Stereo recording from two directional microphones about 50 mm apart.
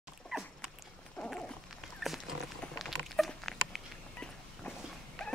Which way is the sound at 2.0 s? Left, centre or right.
Centre.